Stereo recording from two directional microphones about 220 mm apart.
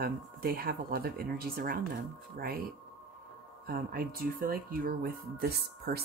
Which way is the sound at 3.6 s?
40° right (ahead or behind).